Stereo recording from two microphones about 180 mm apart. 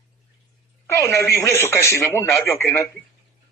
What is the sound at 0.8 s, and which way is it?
Speech, 15° left (ahead or behind).